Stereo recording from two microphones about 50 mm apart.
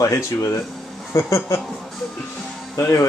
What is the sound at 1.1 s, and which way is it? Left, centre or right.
Speech, left.